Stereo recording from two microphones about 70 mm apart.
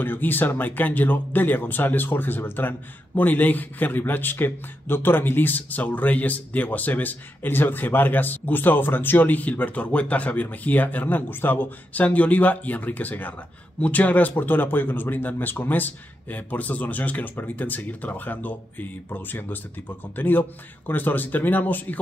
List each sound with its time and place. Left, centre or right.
0.0 s a man's voice: left